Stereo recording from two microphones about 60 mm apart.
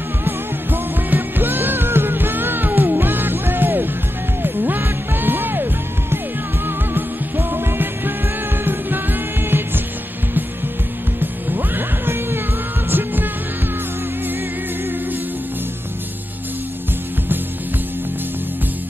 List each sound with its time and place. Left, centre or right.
0.2 s music: right
11.1 s music: right